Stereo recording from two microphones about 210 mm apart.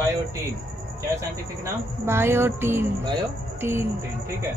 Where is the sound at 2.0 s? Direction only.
10° right (ahead or behind).